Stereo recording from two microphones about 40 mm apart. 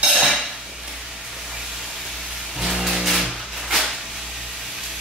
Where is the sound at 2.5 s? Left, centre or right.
Centre.